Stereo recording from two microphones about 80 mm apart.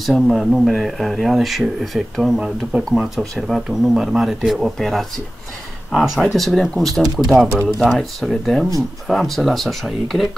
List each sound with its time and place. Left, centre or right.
0.0 s speech: centre